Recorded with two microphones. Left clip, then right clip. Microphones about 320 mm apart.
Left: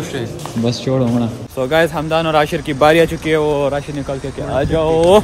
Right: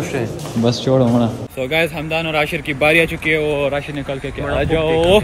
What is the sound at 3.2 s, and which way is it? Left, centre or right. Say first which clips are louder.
Speech: left 2 dB; left.